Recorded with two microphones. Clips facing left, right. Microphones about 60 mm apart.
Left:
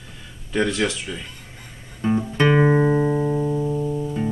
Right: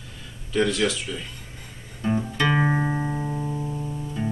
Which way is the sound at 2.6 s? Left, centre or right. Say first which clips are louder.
Left 7 dB; centre.